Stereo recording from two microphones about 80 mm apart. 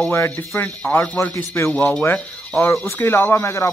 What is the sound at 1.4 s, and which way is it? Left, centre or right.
Speech, left.